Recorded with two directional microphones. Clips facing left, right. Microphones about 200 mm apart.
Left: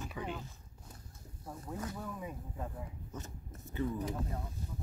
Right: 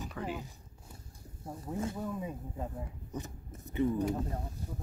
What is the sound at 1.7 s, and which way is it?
Speech, 25° right (ahead or behind).